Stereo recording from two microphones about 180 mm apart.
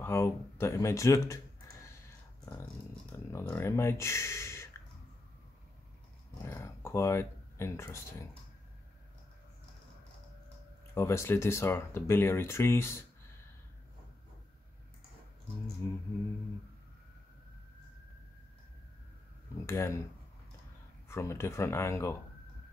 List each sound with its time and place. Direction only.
0.0 s speech: 15° left (ahead or behind)
3.3 s speech: 15° left (ahead or behind)
6.4 s a sound: 15° left (ahead or behind)
11.0 s speech: 15° left (ahead or behind)
15.8 s a sound: 20° left (ahead or behind)
19.6 s speech: 15° left (ahead or behind)
21.1 s speech: 15° left (ahead or behind)